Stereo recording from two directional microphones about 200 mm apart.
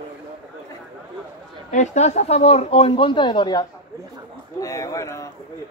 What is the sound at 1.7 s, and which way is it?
Speech, 35° left (ahead or behind).